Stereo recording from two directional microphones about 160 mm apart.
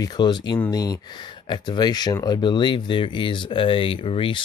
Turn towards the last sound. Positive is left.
turn(degrees=35)  # may be behind; listen again after turning